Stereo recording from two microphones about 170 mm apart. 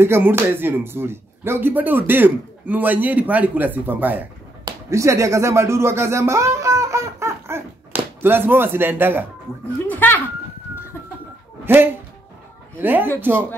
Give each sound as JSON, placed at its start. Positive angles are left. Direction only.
{"t": 0.0, "sound": "speech", "side_deg": -15}
{"t": 9.8, "sound": "a sound", "side_deg": 10}
{"t": 11.6, "sound": "music", "side_deg": -15}
{"t": 12.7, "sound": "speech", "side_deg": -10}